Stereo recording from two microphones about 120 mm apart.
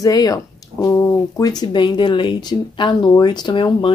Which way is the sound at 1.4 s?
35° left (ahead or behind).